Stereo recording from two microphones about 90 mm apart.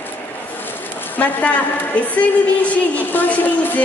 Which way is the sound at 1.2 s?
15° left (ahead or behind).